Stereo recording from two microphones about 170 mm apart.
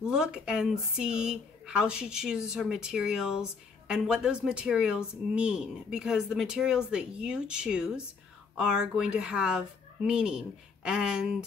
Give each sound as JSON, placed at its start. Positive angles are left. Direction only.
{"t": 0.0, "sound": "speech", "side_deg": -5}